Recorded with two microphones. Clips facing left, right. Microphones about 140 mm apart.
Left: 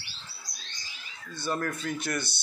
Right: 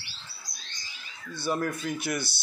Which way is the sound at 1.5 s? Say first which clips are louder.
Right 2 dB; 10° right (ahead or behind).